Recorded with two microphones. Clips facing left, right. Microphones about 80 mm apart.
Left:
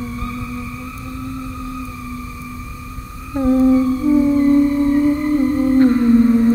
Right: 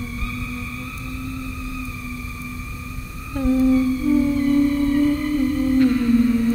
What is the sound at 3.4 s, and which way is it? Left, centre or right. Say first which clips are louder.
Humming: left 4 dB; left.